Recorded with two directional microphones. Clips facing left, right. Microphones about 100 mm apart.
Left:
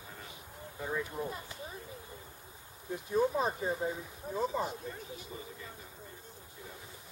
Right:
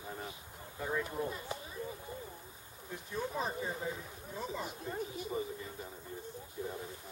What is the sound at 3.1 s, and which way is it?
Speech, 35° left (ahead or behind).